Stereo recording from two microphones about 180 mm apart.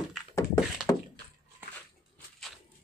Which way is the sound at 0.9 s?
15° left (ahead or behind).